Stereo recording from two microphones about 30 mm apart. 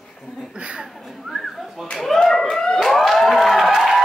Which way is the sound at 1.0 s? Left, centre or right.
Centre.